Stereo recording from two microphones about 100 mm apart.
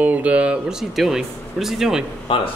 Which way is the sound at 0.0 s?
15° right (ahead or behind).